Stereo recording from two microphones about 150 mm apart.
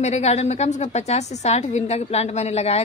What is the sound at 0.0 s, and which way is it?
A woman's voice, 50° left (ahead or behind).